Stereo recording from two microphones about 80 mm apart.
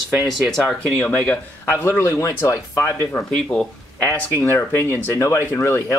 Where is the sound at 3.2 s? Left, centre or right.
Centre.